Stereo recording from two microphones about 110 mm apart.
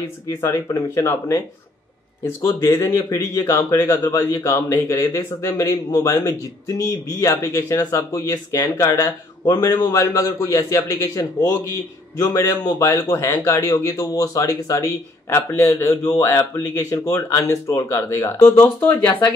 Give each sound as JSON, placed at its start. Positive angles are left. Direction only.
{"t": 0.4, "sound": "a man's voice", "side_deg": 25}
{"t": 2.4, "sound": "a man's voice", "side_deg": 25}